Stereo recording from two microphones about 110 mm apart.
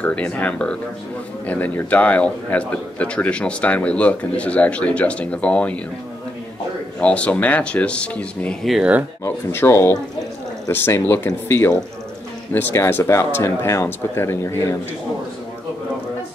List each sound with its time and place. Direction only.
0.0 s a man's voice: 10° left (ahead or behind)
7.0 s a man's voice: 10° left (ahead or behind)
9.2 s speech: 20° left (ahead or behind)